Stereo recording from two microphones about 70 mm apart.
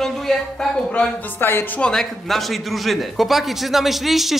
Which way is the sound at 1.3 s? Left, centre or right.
Left.